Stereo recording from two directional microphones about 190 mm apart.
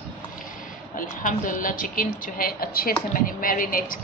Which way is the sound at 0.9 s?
45° left (ahead or behind).